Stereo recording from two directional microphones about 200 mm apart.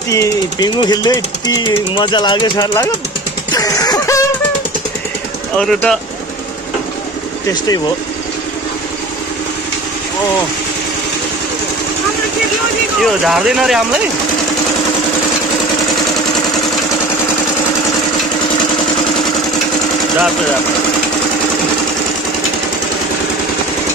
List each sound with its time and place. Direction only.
0.1 s speech: 20° left (ahead or behind)
3.5 s music: 20° left (ahead or behind)
5.6 s speech: 5° left (ahead or behind)
7.4 s speech: 20° left (ahead or behind)
13.0 s speech: centre (ahead or behind)